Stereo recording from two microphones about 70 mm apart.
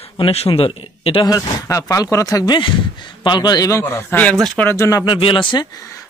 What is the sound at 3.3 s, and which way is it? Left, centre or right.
Speech, left.